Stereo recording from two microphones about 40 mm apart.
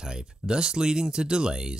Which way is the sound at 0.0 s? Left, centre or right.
Centre.